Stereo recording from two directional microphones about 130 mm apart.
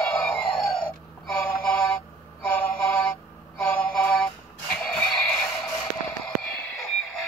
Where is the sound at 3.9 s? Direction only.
5° left (ahead or behind).